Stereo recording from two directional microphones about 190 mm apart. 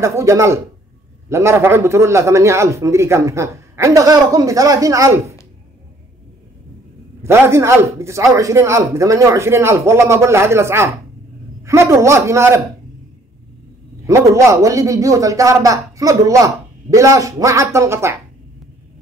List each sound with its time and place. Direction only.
0.0 s a man's voice: 15° right (ahead or behind)
7.2 s a man's voice: 15° right (ahead or behind)
14.0 s a man's voice: 15° right (ahead or behind)